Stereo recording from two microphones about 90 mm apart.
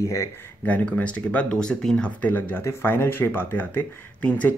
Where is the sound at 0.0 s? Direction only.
35° left (ahead or behind).